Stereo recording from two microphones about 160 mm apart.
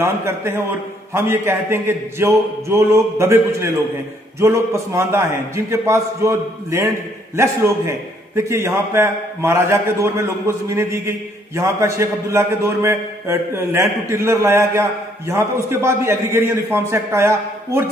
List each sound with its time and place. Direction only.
0.0 s a man's voice: 15° right (ahead or behind)